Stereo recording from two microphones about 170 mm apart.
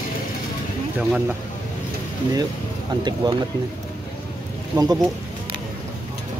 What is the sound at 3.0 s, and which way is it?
Speech, 25° right (ahead or behind).